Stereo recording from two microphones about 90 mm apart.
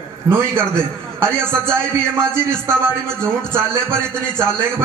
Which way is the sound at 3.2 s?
25° right (ahead or behind).